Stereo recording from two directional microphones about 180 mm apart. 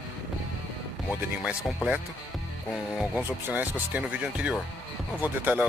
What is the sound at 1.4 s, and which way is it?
Speech, 5° right (ahead or behind).